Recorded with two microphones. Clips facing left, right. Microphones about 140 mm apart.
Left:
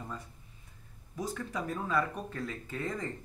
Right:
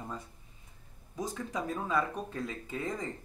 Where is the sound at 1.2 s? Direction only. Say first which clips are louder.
Even; 15° right (ahead or behind).